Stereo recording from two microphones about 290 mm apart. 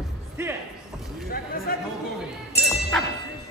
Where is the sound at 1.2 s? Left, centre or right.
Left.